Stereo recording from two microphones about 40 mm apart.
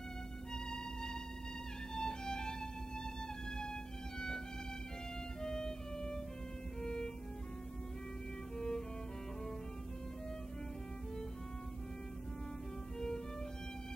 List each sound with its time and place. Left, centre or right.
2.0 s music: centre
5.4 s music: centre
8.5 s music: centre